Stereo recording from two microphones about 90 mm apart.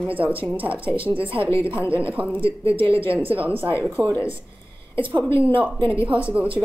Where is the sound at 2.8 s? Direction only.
90° right.